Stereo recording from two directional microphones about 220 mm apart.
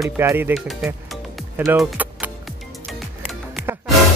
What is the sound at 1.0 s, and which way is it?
Music, centre (ahead or behind).